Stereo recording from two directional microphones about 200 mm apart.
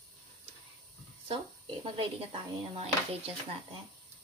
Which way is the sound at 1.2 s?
25° right (ahead or behind).